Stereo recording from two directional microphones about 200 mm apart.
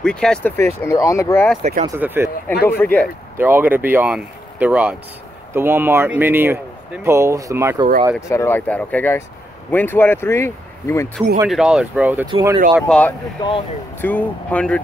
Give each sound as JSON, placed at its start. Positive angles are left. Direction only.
{"t": 0.0, "sound": "speech", "side_deg": 5}
{"t": 1.6, "sound": "speech", "side_deg": -35}
{"t": 2.0, "sound": "speech", "side_deg": -10}
{"t": 2.5, "sound": "speech", "side_deg": 50}
{"t": 2.8, "sound": "speech", "side_deg": 10}
{"t": 3.3, "sound": "speech", "side_deg": -10}
{"t": 8.3, "sound": "speech", "side_deg": 15}
{"t": 11.4, "sound": "speech", "side_deg": 0}
{"t": 12.3, "sound": "speech", "side_deg": -25}
{"t": 12.8, "sound": "speech", "side_deg": 5}
{"t": 13.4, "sound": "speech", "side_deg": 25}
{"t": 14.0, "sound": "speech", "side_deg": 10}